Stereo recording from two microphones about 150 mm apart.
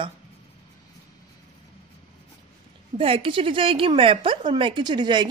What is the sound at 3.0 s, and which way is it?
Speech, 40° right (ahead or behind).